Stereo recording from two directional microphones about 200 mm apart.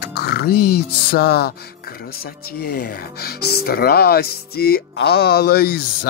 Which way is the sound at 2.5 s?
50° left (ahead or behind).